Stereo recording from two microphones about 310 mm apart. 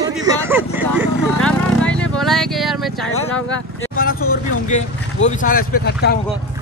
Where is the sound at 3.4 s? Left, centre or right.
Left.